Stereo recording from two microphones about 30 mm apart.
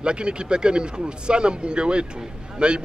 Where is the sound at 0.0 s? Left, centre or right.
Right.